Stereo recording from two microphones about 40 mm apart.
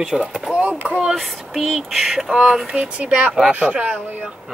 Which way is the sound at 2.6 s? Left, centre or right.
Right.